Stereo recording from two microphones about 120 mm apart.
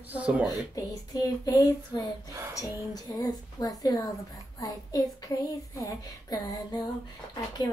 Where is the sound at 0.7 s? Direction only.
30° left (ahead or behind).